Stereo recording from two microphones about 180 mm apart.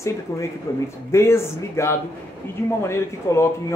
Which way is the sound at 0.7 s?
15° left (ahead or behind).